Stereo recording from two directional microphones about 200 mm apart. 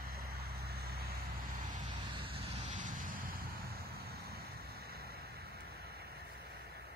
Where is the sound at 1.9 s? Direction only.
25° right (ahead or behind); by 6.8 s 55° right (ahead or behind).